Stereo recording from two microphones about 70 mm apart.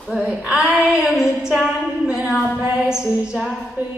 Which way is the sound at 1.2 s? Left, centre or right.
Centre.